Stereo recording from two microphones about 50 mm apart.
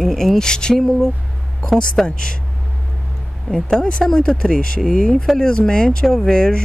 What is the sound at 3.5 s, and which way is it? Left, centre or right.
Speech, centre.